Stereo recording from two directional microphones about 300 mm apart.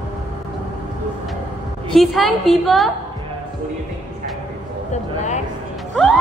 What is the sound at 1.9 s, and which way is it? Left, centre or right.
Speech, centre.